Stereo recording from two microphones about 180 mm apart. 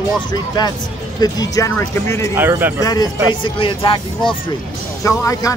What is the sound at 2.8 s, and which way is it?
Speech, 20° left (ahead or behind).